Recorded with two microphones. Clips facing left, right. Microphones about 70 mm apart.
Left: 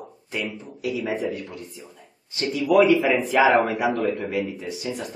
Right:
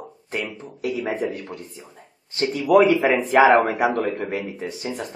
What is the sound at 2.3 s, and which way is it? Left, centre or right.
Speech, right.